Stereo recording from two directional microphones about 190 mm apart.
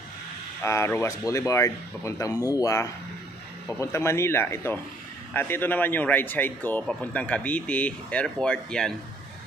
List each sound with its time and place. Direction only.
0.6 s a man's voice: 15° left (ahead or behind)